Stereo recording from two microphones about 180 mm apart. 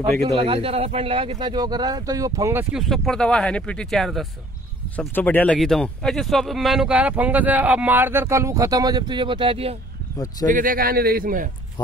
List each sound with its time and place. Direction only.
0.4 s speech: 30° right (ahead or behind)
2.7 s speech: centre (ahead or behind); by 9.8 s 30° right (ahead or behind)
10.4 s a man's voice: 50° right (ahead or behind)